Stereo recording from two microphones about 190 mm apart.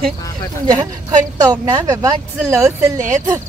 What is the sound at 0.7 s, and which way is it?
Speech, 20° right (ahead or behind).